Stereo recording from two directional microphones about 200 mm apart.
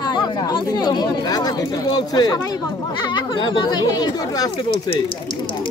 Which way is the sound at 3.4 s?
20° left (ahead or behind).